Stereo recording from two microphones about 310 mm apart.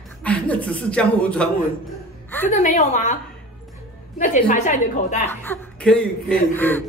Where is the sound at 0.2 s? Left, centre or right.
Centre.